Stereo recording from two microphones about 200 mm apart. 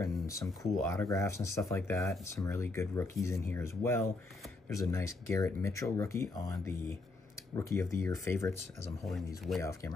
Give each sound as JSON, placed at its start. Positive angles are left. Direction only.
{"t": 0.0, "sound": "speech", "side_deg": 15}
{"t": 9.0, "sound": "speech", "side_deg": 0}
{"t": 9.6, "sound": "speech", "side_deg": 15}